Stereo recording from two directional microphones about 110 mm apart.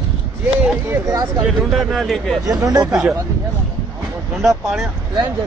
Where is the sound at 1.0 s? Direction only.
35° right (ahead or behind).